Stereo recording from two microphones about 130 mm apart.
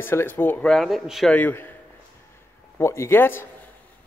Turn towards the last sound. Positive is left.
turn(degrees=15)  # may be behind; listen again after turning